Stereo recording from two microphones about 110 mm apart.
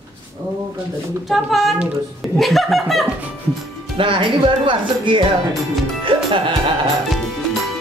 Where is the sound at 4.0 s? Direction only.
55° right (ahead or behind).